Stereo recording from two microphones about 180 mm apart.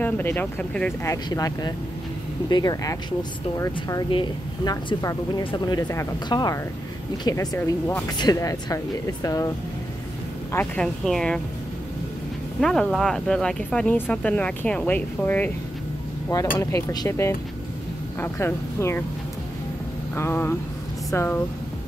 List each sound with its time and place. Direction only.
0.0 s speech: 10° left (ahead or behind)
10.5 s speech: 10° left (ahead or behind)
12.5 s speech: 5° left (ahead or behind)
16.5 s speech: 20° left (ahead or behind)
20.2 s speech: 15° left (ahead or behind)